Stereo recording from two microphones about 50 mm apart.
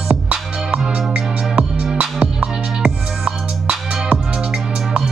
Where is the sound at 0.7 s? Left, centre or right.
Centre.